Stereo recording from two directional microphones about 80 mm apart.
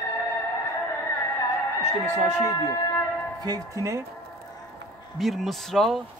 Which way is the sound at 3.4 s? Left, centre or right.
Right.